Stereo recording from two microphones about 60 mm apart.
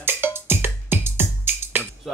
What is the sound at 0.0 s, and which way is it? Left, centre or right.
Music, right.